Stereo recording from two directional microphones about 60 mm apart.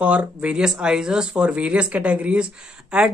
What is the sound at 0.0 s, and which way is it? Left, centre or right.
Speech, right.